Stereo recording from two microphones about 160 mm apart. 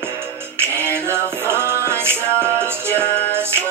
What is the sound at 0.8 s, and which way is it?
Music, 15° right (ahead or behind).